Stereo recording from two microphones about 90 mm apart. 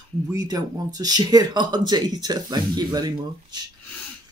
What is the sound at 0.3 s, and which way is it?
Speech, 40° right (ahead or behind).